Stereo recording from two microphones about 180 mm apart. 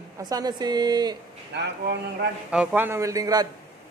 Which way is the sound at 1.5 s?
70° right (ahead or behind).